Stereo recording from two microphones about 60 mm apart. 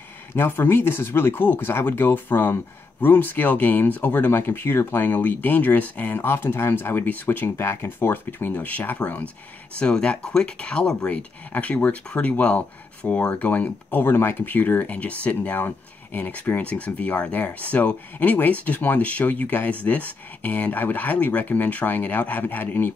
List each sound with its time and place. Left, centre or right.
0.4 s speech: left
9.8 s speech: centre
11.1 s speech: left